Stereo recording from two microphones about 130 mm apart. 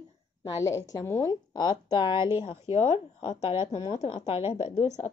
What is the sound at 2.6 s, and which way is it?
A woman's voice, 50° left (ahead or behind).